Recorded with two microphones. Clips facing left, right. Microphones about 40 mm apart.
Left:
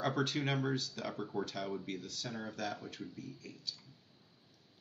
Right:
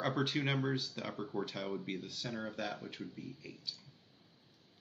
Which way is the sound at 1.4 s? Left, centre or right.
Centre.